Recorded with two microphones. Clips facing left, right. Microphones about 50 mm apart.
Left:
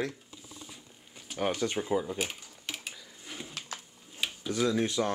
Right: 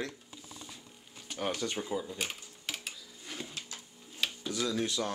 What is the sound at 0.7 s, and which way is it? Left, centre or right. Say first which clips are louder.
Camera: even; centre.